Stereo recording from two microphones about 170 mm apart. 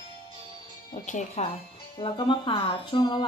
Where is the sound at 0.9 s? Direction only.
45° left (ahead or behind).